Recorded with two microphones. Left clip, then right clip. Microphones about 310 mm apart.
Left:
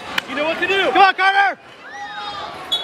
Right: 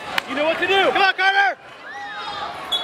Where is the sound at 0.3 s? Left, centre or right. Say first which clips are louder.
Even; right.